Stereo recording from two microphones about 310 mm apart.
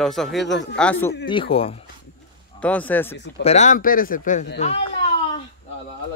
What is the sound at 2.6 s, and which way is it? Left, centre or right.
Speech, centre.